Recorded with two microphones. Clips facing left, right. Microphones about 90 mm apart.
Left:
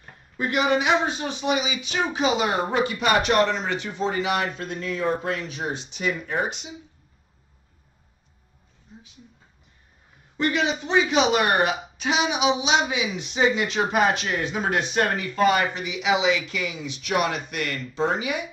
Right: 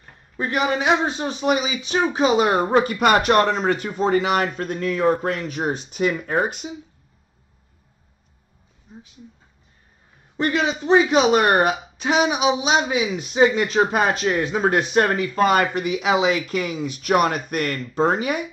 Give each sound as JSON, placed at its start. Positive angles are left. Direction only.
{"t": 0.4, "sound": "speech", "side_deg": -35}
{"t": 10.3, "sound": "speech", "side_deg": -35}